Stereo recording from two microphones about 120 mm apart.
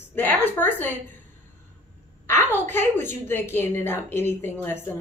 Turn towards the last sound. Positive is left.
turn(degrees=20)  # may be behind; listen again after turning